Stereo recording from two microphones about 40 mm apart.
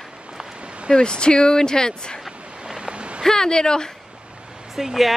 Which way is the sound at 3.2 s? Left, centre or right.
Centre.